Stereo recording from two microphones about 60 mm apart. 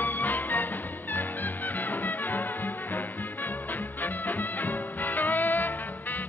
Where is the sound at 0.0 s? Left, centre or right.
Left.